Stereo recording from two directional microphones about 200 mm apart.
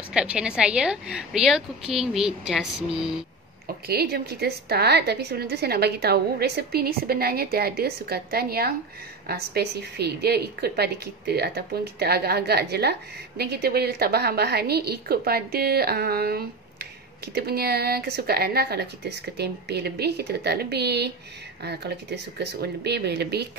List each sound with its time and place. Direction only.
0.1 s a woman's voice: 5° right (ahead or behind)
3.6 s a woman's voice: 50° right (ahead or behind)